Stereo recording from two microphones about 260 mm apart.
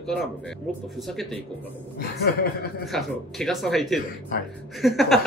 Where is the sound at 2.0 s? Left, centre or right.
Left.